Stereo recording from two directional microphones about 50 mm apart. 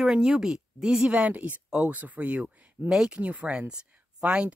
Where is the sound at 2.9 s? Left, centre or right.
Centre.